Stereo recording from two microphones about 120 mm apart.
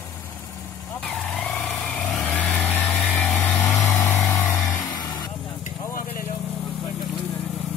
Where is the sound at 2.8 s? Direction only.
Centre (ahead or behind).